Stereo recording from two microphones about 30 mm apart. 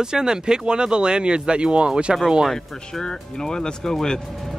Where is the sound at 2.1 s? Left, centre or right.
Centre.